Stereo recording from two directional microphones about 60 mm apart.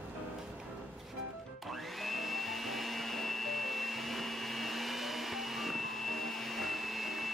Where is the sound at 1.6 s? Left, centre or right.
Centre.